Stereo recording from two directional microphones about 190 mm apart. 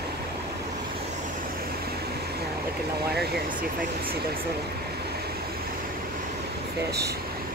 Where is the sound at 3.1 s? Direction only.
55° right (ahead or behind).